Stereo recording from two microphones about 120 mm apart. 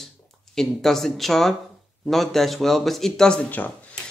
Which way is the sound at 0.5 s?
5° left (ahead or behind).